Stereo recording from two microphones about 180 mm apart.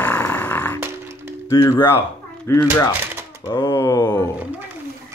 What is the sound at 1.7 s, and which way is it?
Speech, 15° left (ahead or behind).